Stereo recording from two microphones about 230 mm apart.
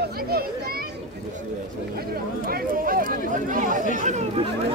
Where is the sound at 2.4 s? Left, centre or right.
Right.